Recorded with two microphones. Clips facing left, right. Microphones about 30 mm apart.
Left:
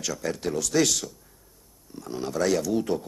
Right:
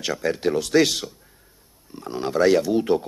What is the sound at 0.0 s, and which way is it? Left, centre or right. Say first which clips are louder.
Speech: right 6 dB; right.